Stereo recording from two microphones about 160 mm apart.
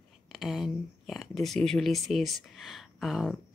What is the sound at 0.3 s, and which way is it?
Speech, centre (ahead or behind).